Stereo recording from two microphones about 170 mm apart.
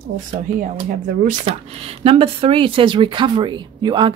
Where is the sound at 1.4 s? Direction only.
35° right (ahead or behind).